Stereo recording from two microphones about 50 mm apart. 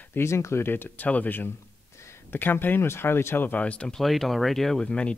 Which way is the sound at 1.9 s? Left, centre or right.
Left.